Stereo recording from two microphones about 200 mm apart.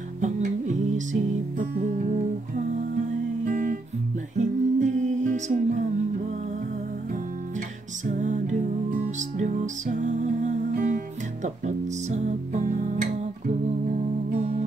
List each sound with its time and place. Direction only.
0.2 s music: 35° right (ahead or behind)
3.4 s guitar: 40° right (ahead or behind)
4.4 s music: 35° right (ahead or behind)
8.1 s music: 35° right (ahead or behind)